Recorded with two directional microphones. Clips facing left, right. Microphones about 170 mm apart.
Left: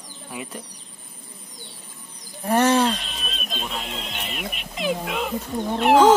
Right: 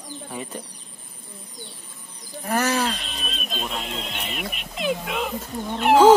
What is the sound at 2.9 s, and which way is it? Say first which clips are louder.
Speech: left 1 dB; centre (ahead or behind).